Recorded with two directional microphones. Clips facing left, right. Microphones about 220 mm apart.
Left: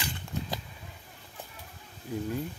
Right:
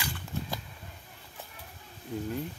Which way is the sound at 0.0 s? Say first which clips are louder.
Left 1 dB; 20° left (ahead or behind).